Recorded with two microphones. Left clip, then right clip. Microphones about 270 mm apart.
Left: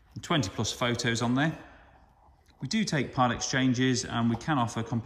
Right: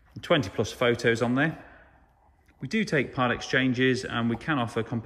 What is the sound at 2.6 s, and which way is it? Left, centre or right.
Speech, centre.